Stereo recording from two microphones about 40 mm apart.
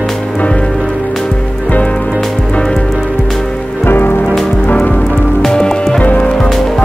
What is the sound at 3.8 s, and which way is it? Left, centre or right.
Rain on surface, left.